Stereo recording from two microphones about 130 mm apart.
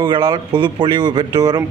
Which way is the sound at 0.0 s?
35° right (ahead or behind).